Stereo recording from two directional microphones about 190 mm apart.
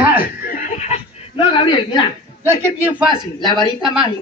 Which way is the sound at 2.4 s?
10° right (ahead or behind).